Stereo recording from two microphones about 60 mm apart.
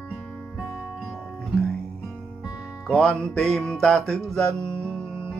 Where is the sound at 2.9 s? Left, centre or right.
Centre.